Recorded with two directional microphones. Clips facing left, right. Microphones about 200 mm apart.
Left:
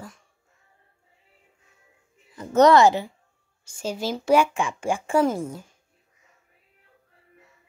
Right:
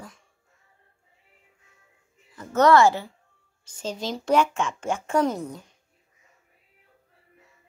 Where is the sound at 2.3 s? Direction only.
20° left (ahead or behind).